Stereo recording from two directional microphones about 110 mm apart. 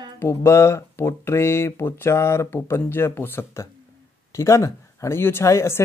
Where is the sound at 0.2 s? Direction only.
25° left (ahead or behind).